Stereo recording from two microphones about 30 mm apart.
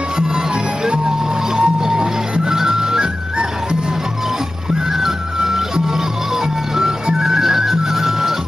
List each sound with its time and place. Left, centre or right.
0.8 s music: right
5.0 s music: centre
7.2 s music: centre